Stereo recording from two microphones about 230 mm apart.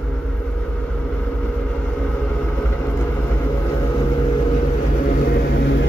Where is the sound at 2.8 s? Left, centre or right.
Centre.